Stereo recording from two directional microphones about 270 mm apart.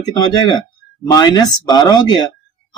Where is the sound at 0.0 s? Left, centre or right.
Centre.